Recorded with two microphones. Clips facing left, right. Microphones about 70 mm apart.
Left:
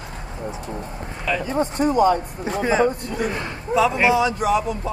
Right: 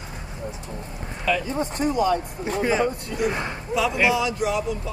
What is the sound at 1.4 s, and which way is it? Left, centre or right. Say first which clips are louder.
A man's voice: left 4 dB; left.